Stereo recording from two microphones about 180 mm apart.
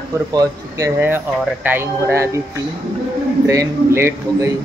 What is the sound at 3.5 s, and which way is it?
Speech, 15° right (ahead or behind).